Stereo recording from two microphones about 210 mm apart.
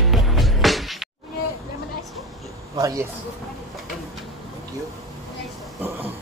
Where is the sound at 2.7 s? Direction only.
15° right (ahead or behind).